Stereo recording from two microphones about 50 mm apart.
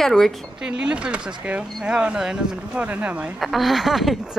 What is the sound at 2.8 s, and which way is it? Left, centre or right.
Speech, right.